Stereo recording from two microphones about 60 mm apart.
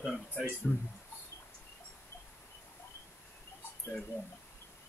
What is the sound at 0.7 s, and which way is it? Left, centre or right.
Speech, centre.